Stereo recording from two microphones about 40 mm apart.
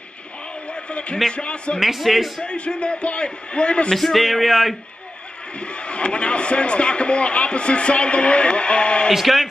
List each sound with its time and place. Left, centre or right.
0.7 s a sound: left
1.3 s a man's voice: left
1.8 s speech: centre
2.4 s a man's voice: left
3.9 s speech: centre
5.6 s a man's voice: left
9.1 s speech: centre